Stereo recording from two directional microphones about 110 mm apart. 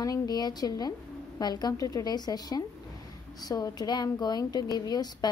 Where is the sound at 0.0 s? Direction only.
35° left (ahead or behind).